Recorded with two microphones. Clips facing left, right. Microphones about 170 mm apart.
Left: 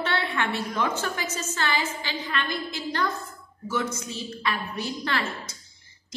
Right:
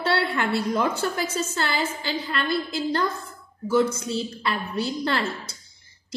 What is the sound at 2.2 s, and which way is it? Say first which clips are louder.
Speech: right 4 dB; 35° right (ahead or behind).